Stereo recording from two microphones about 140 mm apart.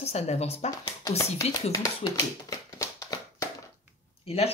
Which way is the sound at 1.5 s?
25° left (ahead or behind).